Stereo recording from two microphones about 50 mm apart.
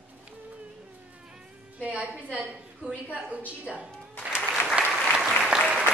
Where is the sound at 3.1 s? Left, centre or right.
Right.